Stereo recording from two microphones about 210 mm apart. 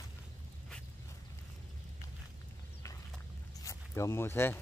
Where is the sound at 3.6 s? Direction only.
15° left (ahead or behind).